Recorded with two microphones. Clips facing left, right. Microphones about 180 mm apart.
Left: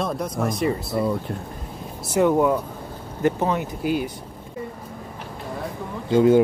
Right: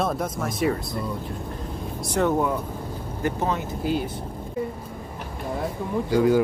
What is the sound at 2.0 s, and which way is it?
Speech, 10° left (ahead or behind).